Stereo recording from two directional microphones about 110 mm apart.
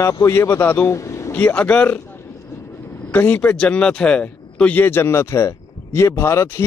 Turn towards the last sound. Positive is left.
turn(degrees=25)  # may be behind; listen again after turning